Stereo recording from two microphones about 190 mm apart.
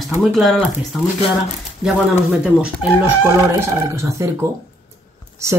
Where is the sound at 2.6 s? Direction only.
10° right (ahead or behind).